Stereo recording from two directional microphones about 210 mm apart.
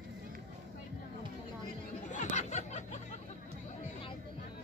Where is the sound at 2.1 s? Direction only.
35° left (ahead or behind).